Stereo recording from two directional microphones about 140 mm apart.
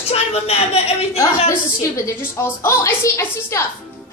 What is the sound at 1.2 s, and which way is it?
A woman's voice, 20° left (ahead or behind).